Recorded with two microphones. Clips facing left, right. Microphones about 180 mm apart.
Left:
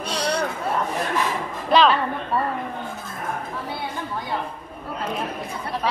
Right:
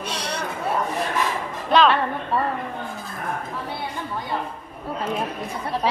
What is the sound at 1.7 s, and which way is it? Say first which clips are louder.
Music: even; centre (ahead or behind).